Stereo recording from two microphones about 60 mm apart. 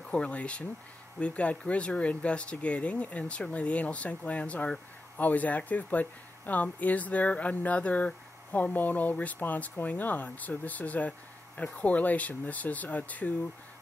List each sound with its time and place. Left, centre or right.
0.1 s speech: centre